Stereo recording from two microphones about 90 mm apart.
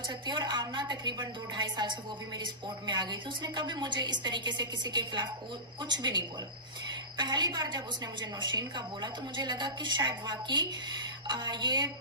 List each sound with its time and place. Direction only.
0.3 s a woman's voice: 55° right (ahead or behind)